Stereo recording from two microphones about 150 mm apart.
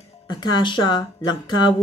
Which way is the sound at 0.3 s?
30° left (ahead or behind).